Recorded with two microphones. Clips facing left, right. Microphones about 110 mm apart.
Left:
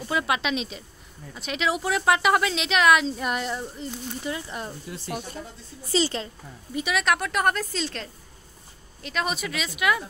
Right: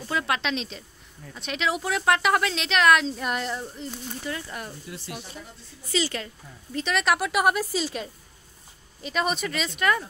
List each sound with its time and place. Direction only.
0.1 s speech: 5° left (ahead or behind)
4.3 s speech: 20° left (ahead or behind)
5.0 s speech: 50° left (ahead or behind)
5.9 s speech: 30° left (ahead or behind)
6.7 s speech: 10° left (ahead or behind)